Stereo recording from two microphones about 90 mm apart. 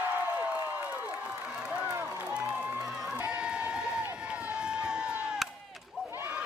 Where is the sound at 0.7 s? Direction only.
20° right (ahead or behind).